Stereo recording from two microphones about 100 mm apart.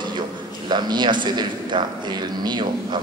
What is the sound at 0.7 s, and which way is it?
A man's voice, 50° right (ahead or behind).